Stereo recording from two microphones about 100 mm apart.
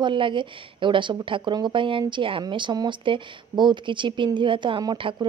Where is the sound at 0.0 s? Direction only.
55° right (ahead or behind).